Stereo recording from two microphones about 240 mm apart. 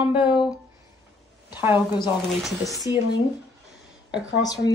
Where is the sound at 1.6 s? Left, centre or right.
Centre.